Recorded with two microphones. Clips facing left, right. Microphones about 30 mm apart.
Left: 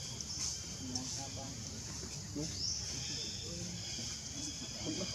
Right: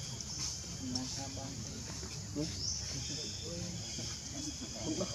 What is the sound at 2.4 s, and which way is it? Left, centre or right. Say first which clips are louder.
Speech: right 3 dB; centre.